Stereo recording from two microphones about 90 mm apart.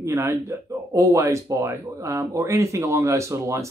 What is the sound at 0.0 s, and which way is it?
Speech, 35° right (ahead or behind).